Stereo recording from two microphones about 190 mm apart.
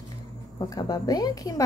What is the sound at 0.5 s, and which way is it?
A woman's voice, 20° left (ahead or behind).